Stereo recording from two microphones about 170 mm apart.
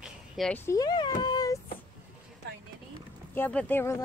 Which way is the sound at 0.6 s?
20° left (ahead or behind).